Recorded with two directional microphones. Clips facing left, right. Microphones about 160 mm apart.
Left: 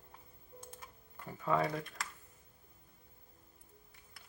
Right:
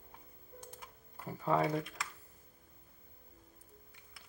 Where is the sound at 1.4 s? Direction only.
30° right (ahead or behind).